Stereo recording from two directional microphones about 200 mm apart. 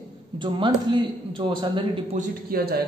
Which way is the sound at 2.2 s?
50° right (ahead or behind).